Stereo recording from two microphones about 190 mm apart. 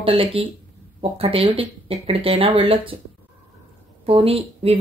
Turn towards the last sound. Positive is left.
turn(degrees=-30)  # may be behind; listen again after turning